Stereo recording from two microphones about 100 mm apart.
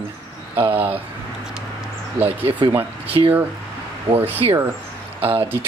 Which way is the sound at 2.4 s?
65° right (ahead or behind).